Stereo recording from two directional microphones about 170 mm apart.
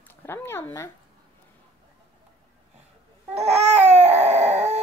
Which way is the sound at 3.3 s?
40° right (ahead or behind).